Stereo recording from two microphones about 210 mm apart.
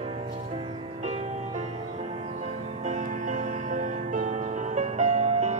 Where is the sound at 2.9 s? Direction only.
40° right (ahead or behind).